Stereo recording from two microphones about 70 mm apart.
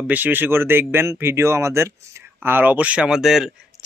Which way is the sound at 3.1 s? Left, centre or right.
Centre.